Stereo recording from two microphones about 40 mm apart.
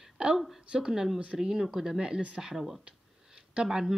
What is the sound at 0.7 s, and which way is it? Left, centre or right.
Speech, centre.